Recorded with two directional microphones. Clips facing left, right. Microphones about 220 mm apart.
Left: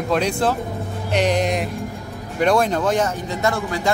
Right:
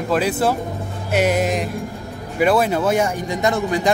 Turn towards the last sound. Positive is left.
turn(degrees=-20)  # may be behind; listen again after turning